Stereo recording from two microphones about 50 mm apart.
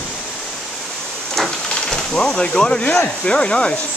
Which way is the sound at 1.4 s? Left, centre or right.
Centre.